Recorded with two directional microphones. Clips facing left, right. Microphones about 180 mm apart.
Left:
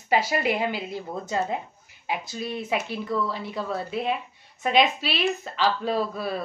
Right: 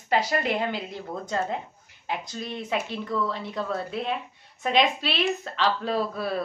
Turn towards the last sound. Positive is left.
turn(degrees=0)  # may be behind; listen again after turning